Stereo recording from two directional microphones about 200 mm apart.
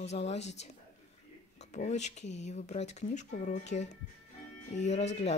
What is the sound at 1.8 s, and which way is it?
Speech, 35° left (ahead or behind).